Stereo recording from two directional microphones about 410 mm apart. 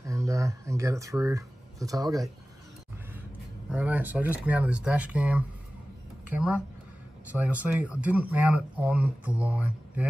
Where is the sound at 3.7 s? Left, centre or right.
Centre.